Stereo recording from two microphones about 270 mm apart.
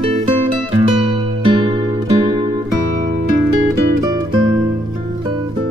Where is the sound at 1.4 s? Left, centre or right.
Centre.